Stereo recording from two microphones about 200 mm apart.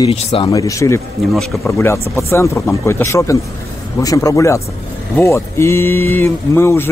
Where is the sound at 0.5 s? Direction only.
15° left (ahead or behind).